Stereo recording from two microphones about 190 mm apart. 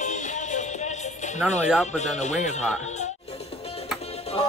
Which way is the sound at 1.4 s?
5° right (ahead or behind).